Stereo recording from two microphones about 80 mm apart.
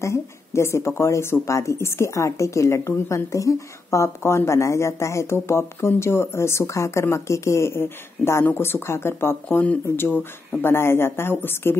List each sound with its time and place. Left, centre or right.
0.0 s speech: left